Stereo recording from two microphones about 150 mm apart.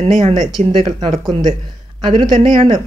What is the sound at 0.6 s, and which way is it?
Speech, 45° right (ahead or behind).